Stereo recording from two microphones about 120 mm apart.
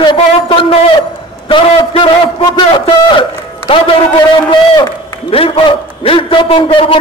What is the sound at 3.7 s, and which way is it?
Speech, 40° left (ahead or behind).